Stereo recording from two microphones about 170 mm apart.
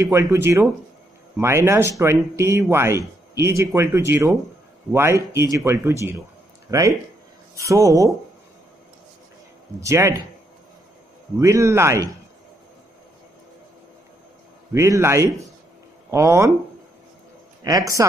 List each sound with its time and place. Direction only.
0.0 s speech: 20° right (ahead or behind)
9.8 s speech: 15° right (ahead or behind)
11.3 s speech: 15° right (ahead or behind)
14.7 s speech: 15° right (ahead or behind)
17.6 s speech: 20° right (ahead or behind)